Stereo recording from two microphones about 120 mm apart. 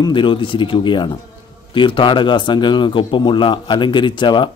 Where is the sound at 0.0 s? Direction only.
45° left (ahead or behind).